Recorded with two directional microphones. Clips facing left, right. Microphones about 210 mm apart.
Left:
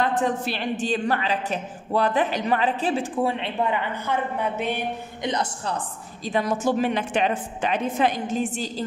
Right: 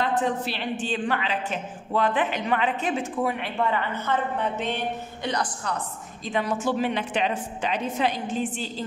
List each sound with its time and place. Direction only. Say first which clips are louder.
0.5 s a woman's voice: left 3 dB; 40° left (ahead or behind); by 3.8 s 25° left (ahead or behind)
3.9 s a woman's voice: even; 10° left (ahead or behind)
5.2 s a woman's voice: left 2 dB; 25° left (ahead or behind)
6.2 s a woman's voice: left 3 dB; 40° left (ahead or behind)